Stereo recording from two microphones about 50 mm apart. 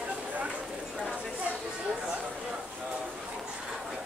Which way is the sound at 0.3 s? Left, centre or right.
Right.